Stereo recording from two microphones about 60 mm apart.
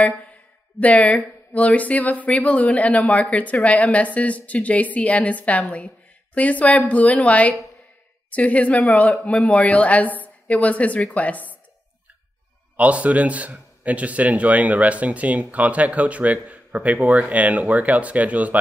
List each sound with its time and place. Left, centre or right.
0.7 s speech: left
12.7 s a man's voice: right